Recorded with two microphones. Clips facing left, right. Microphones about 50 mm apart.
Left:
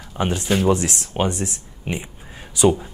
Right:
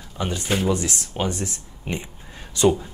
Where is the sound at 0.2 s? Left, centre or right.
Left.